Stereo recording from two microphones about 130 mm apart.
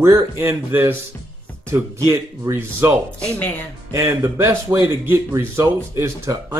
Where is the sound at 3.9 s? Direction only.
20° right (ahead or behind).